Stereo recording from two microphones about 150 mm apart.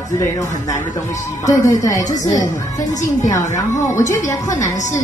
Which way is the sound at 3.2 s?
20° left (ahead or behind).